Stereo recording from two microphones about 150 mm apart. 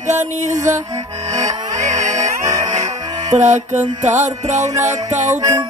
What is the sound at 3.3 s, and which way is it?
Music, 50° right (ahead or behind).